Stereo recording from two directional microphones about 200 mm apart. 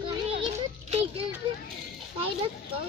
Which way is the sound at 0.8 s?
30° right (ahead or behind).